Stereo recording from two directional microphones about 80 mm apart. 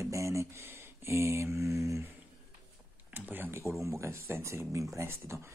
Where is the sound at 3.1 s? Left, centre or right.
Right.